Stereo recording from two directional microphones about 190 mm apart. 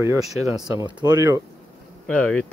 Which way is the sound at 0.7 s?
20° right (ahead or behind).